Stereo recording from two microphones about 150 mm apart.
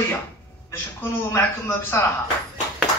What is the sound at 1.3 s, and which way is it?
Speech, 15° left (ahead or behind).